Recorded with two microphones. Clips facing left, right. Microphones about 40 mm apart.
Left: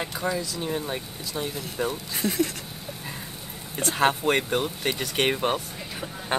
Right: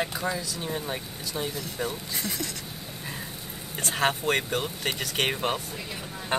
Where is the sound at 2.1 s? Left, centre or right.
Left.